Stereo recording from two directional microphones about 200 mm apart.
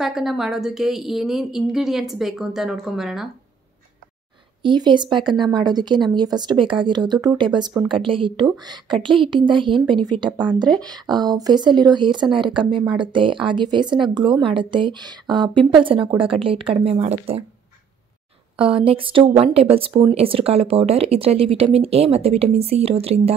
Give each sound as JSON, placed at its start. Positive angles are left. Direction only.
{"t": 0.0, "sound": "a woman's voice", "side_deg": 0}
{"t": 4.6, "sound": "a woman's voice", "side_deg": -20}
{"t": 18.6, "sound": "a woman's voice", "side_deg": -25}